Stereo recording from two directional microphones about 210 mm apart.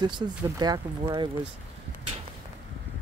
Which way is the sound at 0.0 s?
20° right (ahead or behind).